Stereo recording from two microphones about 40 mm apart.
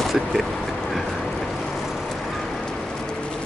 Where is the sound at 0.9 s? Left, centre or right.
Centre.